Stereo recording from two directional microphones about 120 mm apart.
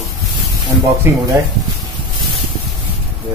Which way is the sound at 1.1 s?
20° right (ahead or behind).